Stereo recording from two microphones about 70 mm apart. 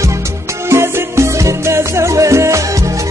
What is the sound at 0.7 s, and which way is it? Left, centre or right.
Music, right.